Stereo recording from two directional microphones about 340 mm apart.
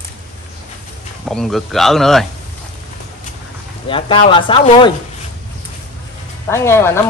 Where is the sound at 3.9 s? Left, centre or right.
Centre.